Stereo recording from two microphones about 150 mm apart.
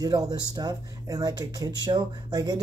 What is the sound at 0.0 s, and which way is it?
Speech, 25° right (ahead or behind).